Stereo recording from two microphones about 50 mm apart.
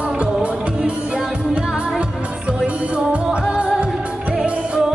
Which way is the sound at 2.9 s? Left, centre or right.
Right.